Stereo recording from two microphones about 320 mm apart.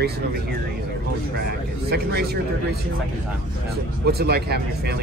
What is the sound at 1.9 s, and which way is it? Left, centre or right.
Speech, right.